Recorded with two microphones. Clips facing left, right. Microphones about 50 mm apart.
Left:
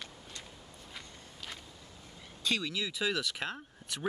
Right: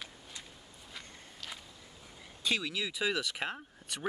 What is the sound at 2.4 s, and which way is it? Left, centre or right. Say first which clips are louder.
Speech: even; centre.